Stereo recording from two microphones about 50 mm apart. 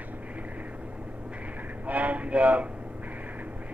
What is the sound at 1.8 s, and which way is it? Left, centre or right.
Speech, right.